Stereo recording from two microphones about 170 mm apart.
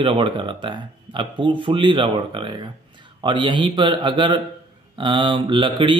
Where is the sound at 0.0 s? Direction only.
30° right (ahead or behind).